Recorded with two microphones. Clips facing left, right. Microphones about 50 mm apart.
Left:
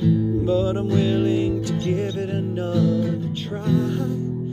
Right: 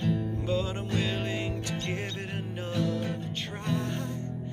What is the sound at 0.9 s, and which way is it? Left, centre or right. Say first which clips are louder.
Music: left 10 dB; right.